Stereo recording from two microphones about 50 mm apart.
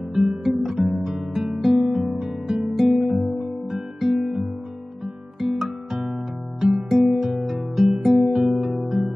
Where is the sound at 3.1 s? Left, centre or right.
Centre.